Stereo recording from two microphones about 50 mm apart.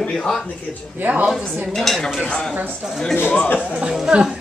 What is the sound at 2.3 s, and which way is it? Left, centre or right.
Speech, centre.